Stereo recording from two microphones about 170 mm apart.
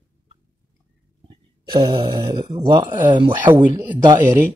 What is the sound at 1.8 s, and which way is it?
Speech, 25° right (ahead or behind).